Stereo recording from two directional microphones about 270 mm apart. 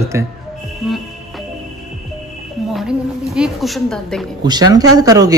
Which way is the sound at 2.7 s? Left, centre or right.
Centre.